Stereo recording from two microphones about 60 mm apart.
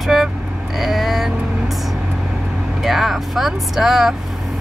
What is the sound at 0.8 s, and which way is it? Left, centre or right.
Vehicle, centre.